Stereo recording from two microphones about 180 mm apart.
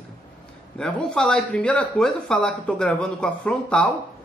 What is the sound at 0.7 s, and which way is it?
Speech, 5° left (ahead or behind).